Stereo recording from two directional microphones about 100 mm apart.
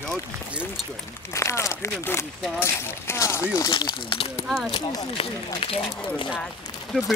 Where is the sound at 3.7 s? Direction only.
55° left (ahead or behind).